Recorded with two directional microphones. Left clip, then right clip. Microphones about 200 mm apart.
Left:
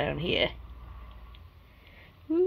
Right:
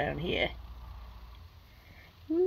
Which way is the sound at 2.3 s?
5° left (ahead or behind).